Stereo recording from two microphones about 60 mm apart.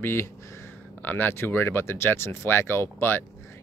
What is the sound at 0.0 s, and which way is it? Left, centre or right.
Speech, left.